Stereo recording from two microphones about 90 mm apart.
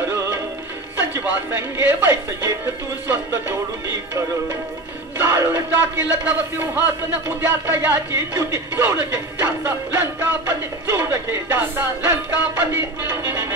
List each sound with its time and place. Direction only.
1.2 s speech: 25° right (ahead or behind)
5.2 s speech: 30° right (ahead or behind)